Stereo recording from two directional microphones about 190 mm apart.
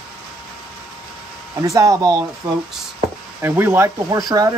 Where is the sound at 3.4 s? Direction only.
10° right (ahead or behind).